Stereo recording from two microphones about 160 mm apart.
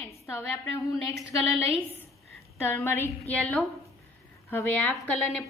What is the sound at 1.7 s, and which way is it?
A woman's voice, 10° left (ahead or behind).